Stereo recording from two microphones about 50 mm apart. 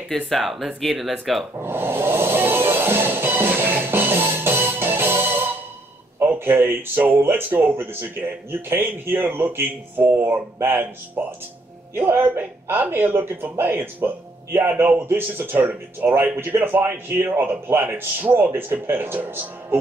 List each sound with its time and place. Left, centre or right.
0.1 s speech: centre
1.6 s music: right
6.1 s a sound: right
7.2 s speech: right
15.6 s speech: right
16.5 s speech: right
17.8 s speech: right
18.3 s speech: right